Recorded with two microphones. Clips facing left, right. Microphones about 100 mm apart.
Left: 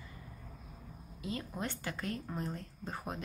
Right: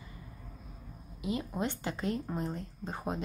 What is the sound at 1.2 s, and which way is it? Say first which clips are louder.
A woman's voice: right 5 dB; 20° right (ahead or behind).